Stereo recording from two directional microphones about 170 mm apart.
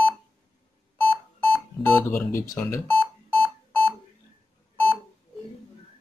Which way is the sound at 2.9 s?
Centre (ahead or behind).